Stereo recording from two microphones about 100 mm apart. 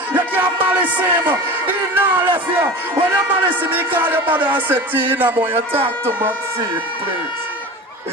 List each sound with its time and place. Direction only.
0.1 s music: 20° right (ahead or behind)
2.6 s speech: 20° right (ahead or behind)
3.6 s music: 20° right (ahead or behind)